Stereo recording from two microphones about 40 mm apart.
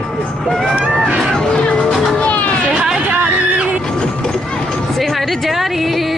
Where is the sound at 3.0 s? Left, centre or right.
Right.